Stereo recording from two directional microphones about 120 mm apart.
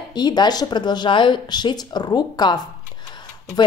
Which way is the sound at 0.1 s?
35° left (ahead or behind).